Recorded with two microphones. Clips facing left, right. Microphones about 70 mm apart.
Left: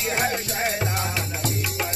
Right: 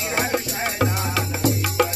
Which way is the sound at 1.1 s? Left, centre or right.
Right.